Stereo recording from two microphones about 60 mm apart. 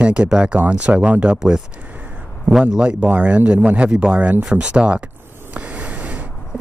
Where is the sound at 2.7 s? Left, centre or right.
Centre.